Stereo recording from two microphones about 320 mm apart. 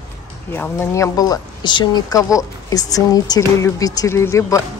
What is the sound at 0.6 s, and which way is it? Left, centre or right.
Speech, centre.